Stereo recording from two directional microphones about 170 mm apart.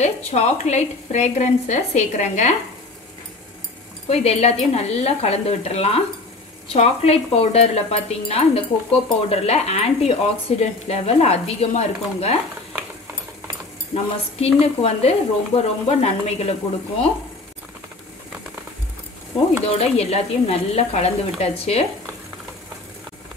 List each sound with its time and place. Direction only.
0.0 s speech: 40° left (ahead or behind)
4.1 s speech: 40° left (ahead or behind)
13.9 s speech: 35° left (ahead or behind)
19.6 s speech: 35° left (ahead or behind)